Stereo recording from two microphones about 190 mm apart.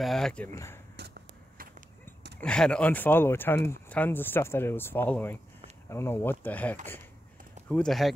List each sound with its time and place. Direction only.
0.0 s speech: centre (ahead or behind)
1.0 s a sound: 60° right (ahead or behind)
2.4 s speech: 5° left (ahead or behind)